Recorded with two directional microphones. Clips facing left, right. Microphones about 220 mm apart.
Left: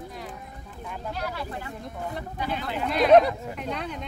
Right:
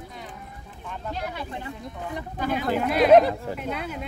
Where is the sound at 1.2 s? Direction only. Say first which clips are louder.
Even; 20° right (ahead or behind).